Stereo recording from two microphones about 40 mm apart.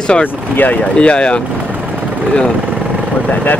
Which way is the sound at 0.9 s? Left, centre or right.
Left.